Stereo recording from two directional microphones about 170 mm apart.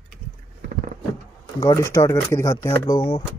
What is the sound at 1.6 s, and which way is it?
Speech, 20° left (ahead or behind).